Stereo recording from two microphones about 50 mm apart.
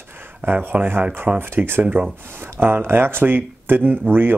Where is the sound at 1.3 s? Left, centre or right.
Centre.